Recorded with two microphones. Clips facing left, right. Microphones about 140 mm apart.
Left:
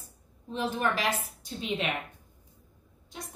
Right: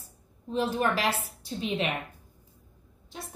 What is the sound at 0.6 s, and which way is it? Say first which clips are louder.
Speech: right 3 dB; 40° right (ahead or behind).